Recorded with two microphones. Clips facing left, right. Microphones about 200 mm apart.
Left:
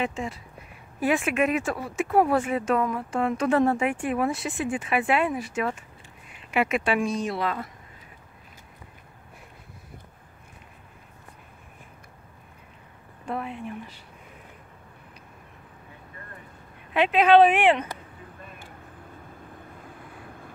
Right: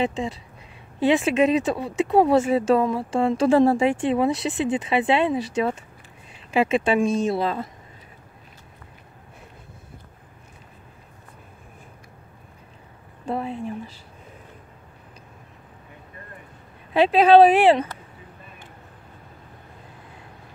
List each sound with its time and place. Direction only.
0.0 s speech: 30° right (ahead or behind)
13.2 s speech: 30° right (ahead or behind)
16.9 s speech: 35° right (ahead or behind)